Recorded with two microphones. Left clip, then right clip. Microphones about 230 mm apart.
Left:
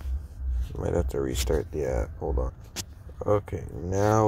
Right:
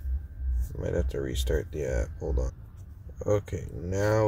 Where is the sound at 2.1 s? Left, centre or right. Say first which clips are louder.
Left 3 dB; centre.